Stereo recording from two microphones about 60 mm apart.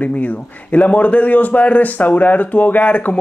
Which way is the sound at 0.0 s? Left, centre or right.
Left.